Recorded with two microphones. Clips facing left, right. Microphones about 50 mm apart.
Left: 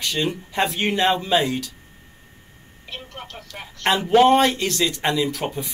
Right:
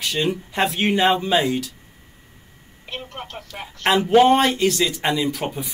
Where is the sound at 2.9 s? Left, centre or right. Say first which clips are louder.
Right 3 dB; centre.